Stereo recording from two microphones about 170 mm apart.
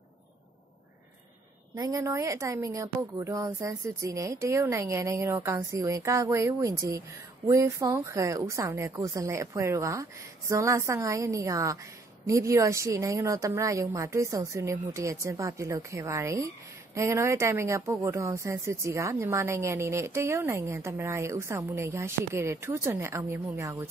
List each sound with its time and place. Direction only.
1.8 s a woman's voice: 20° right (ahead or behind)